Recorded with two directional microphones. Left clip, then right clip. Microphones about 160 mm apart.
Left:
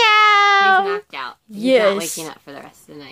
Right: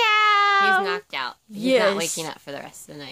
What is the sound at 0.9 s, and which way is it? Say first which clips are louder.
Music: left 2 dB; 90° right.